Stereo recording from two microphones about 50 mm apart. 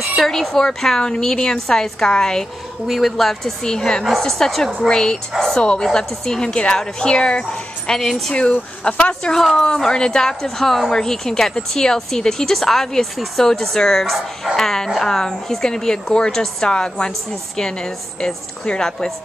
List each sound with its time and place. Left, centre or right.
0.2 s speech: centre
2.9 s a woman's voice: centre
8.0 s a woman's voice: centre
8.4 s speech: centre
9.4 s a woman's voice: centre
9.7 s a woman's voice: centre